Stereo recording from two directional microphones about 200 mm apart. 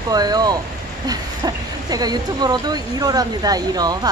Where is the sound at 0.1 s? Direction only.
20° right (ahead or behind).